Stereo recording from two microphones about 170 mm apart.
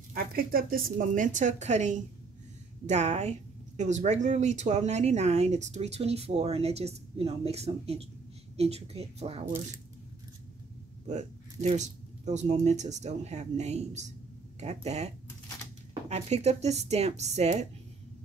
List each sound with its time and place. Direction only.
0.1 s a woman's voice: 60° right (ahead or behind); by 9.5 s 35° right (ahead or behind)
11.1 s a woman's voice: 40° right (ahead or behind)